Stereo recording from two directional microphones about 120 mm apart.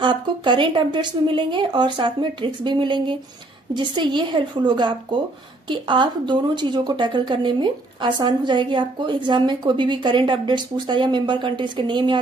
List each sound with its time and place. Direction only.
0.0 s a woman's voice: 40° right (ahead or behind)